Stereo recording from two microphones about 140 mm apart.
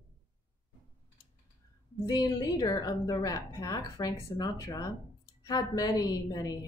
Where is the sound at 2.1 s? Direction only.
30° left (ahead or behind).